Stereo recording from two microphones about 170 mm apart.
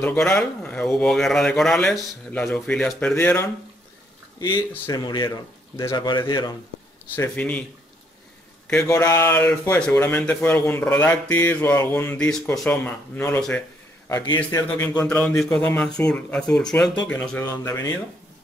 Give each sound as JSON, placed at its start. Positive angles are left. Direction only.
{"t": 0.0, "sound": "speech", "side_deg": 5}
{"t": 7.2, "sound": "speech", "side_deg": 10}
{"t": 8.7, "sound": "speech", "side_deg": 20}
{"t": 14.0, "sound": "a man's voice", "side_deg": 20}
{"t": 15.1, "sound": "speech", "side_deg": 5}